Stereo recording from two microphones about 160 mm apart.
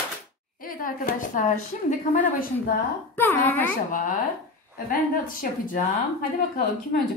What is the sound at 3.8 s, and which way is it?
A woman's voice, 55° left (ahead or behind).